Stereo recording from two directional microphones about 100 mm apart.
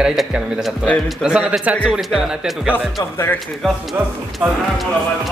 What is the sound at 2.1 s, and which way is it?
Speech, centre (ahead or behind).